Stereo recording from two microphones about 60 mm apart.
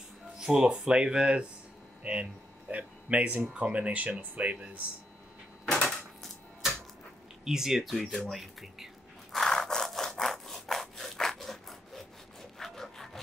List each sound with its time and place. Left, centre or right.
0.4 s speech: centre
5.9 s typewriter: centre
7.4 s speech: centre
9.3 s rub: centre